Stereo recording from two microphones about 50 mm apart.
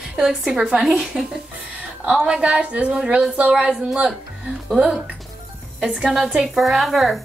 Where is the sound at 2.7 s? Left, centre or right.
Right.